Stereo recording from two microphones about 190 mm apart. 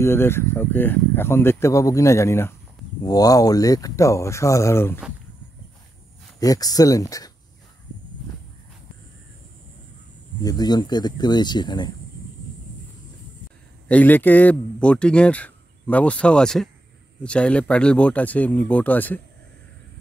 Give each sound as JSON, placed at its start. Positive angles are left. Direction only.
{"t": 0.0, "sound": "speech", "side_deg": 10}
{"t": 6.4, "sound": "speech", "side_deg": 20}
{"t": 10.4, "sound": "speech", "side_deg": 20}
{"t": 13.8, "sound": "speech", "side_deg": 10}